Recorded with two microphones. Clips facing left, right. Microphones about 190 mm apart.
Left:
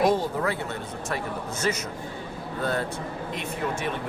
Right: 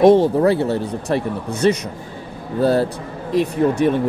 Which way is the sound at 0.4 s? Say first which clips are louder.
Right 12 dB; 35° right (ahead or behind).